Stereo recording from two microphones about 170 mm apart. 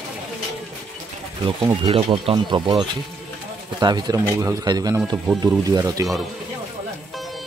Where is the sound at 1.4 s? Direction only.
30° right (ahead or behind).